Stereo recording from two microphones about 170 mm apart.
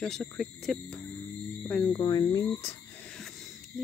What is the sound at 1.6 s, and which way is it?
Music, 10° left (ahead or behind).